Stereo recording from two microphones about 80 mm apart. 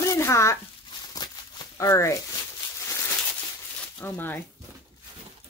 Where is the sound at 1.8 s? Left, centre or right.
Left.